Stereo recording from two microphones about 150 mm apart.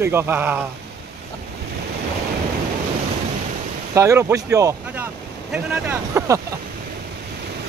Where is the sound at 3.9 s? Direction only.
20° right (ahead or behind).